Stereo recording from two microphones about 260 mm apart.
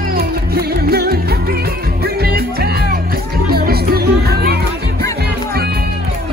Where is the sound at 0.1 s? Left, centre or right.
Right.